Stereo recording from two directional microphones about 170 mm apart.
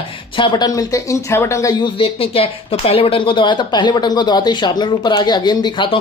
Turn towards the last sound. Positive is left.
turn(degrees=30)  # may be behind; listen again after turning